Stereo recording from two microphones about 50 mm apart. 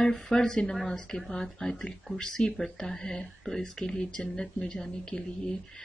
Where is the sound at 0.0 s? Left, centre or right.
Centre.